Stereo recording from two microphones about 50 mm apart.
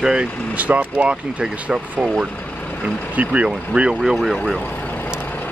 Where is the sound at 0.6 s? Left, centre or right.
Right.